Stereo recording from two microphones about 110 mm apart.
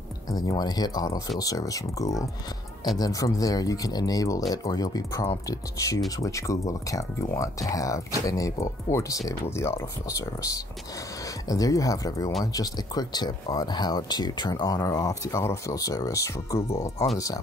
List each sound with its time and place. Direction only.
0.3 s speech: 35° left (ahead or behind)